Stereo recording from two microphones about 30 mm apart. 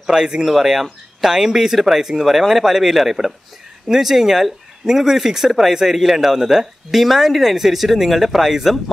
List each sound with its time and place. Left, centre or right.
0.0 s speech: right
0.5 s speech: centre